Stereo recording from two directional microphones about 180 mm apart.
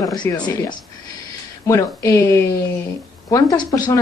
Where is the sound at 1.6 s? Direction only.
15° left (ahead or behind).